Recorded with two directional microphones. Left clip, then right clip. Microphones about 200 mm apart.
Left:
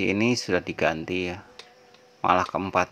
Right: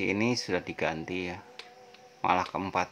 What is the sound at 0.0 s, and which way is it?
Speech, 20° left (ahead or behind).